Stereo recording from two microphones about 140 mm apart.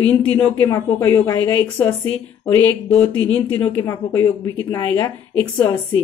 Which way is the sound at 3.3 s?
15° left (ahead or behind).